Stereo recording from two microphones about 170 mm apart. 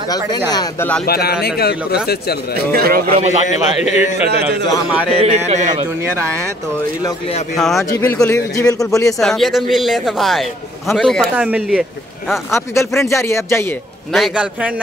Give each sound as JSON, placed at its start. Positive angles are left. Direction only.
{"t": 0.5, "sound": "a man's voice", "side_deg": 25}
{"t": 1.0, "sound": "speech", "side_deg": 65}
{"t": 2.5, "sound": "speech", "side_deg": -60}
{"t": 3.4, "sound": "a man's voice", "side_deg": 45}
{"t": 4.3, "sound": "a man's voice", "side_deg": -75}
{"t": 5.1, "sound": "speech", "side_deg": -35}
{"t": 7.5, "sound": "a man's voice", "side_deg": 0}
{"t": 8.0, "sound": "a man's voice", "side_deg": 15}
{"t": 9.2, "sound": "a man's voice", "side_deg": 0}
{"t": 12.5, "sound": "speech", "side_deg": 15}
{"t": 14.1, "sound": "a man's voice", "side_deg": -5}